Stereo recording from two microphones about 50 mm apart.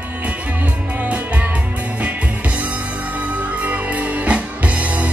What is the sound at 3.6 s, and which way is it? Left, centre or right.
Music, right.